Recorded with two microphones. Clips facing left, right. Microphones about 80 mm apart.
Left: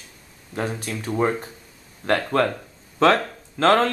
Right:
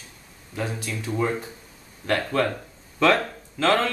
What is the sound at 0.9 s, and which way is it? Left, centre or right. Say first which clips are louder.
Speech: left 2 dB; left.